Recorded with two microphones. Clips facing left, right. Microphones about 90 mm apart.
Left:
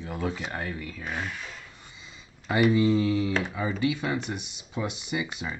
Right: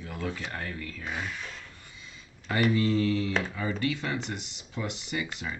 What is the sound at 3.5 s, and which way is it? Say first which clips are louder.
Speech: left 3 dB; 15° left (ahead or behind).